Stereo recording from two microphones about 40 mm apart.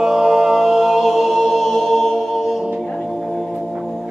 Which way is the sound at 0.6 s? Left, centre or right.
Centre.